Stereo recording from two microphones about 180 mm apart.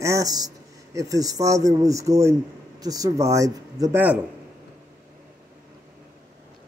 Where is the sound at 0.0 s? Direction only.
20° right (ahead or behind).